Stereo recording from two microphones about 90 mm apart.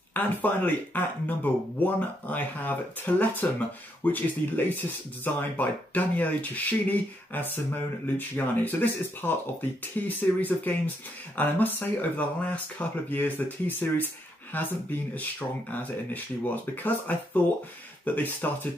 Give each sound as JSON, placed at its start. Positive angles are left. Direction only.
{"t": 0.1, "sound": "speech", "side_deg": 20}